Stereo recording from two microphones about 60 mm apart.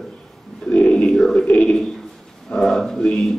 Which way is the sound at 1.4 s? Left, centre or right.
Centre.